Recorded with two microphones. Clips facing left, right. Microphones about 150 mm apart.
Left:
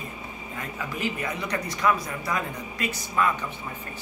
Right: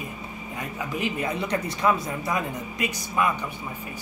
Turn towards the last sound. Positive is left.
turn(degrees=-15)  # may be behind; listen again after turning